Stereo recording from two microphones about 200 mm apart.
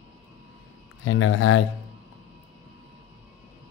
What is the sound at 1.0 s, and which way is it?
Speech, 90° left.